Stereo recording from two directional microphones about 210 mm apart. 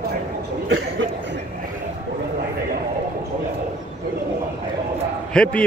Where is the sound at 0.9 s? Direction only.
60° right (ahead or behind).